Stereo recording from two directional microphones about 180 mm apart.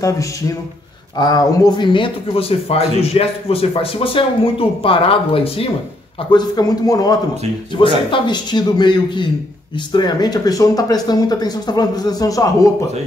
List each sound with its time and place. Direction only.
1.1 s speech: 20° left (ahead or behind)
6.3 s speech: 20° left (ahead or behind)